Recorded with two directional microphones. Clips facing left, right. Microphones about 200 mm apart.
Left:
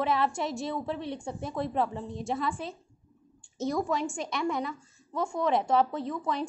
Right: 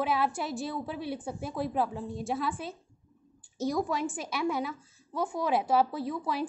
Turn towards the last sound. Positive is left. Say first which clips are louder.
# left 1 dB
turn(degrees=-5)  # may be behind; listen again after turning